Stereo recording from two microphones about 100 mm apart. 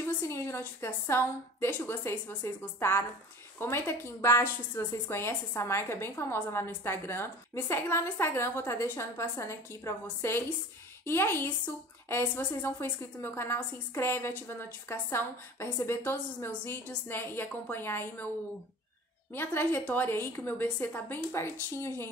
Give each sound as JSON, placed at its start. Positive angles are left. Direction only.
{"t": 0.0, "sound": "a woman's voice", "side_deg": 25}
{"t": 19.3, "sound": "a woman's voice", "side_deg": 25}